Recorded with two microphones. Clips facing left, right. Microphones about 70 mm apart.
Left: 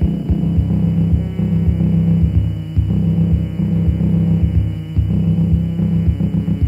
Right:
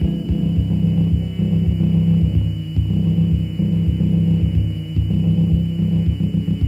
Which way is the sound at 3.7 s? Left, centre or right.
Left.